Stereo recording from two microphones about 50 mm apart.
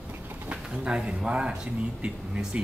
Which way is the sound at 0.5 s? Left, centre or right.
Centre.